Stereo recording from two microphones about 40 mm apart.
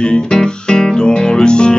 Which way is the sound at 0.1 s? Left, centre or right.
Centre.